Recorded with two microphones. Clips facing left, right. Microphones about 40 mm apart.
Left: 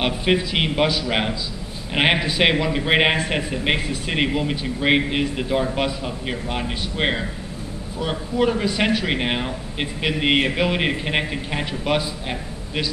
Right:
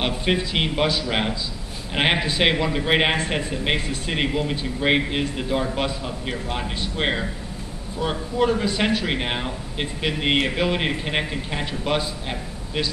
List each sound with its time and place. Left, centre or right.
0.0 s a man's voice: centre